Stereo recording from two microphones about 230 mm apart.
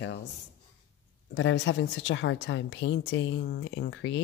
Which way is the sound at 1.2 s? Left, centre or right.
Left.